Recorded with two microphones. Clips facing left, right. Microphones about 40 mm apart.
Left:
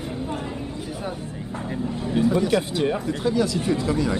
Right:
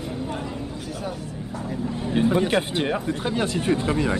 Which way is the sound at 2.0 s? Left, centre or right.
Right.